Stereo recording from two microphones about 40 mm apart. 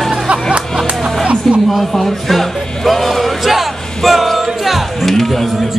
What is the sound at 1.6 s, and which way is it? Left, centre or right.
Music, centre.